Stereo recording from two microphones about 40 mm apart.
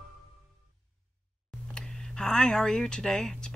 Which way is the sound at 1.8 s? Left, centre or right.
Centre.